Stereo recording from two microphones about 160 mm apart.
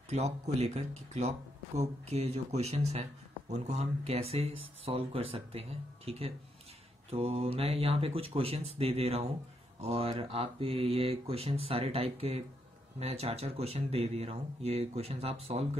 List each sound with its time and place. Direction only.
0.1 s speech: 40° right (ahead or behind)